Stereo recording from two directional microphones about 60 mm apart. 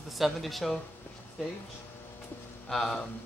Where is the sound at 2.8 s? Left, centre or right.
Centre.